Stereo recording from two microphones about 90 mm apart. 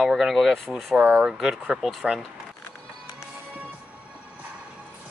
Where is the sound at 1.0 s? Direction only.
15° right (ahead or behind).